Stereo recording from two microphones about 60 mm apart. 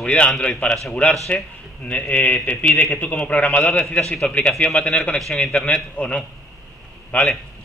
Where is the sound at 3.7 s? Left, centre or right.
Centre.